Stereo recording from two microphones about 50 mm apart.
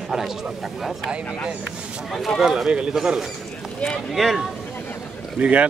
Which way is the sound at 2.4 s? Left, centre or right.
Centre.